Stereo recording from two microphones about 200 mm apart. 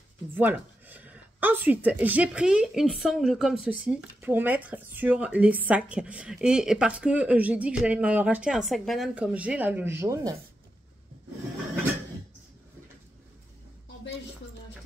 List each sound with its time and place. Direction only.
0.3 s speech: 10° right (ahead or behind)